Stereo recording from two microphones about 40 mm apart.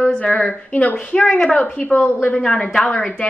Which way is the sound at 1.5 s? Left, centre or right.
Left.